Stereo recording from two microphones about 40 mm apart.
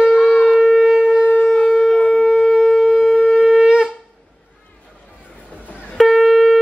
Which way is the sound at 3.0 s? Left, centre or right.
Centre.